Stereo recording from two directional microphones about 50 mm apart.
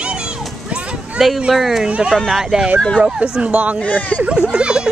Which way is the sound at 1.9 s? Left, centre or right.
Centre.